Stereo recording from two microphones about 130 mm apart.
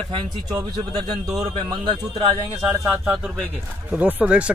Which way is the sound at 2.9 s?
10° right (ahead or behind).